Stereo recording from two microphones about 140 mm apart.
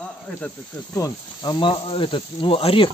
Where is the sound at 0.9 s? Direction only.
30° left (ahead or behind).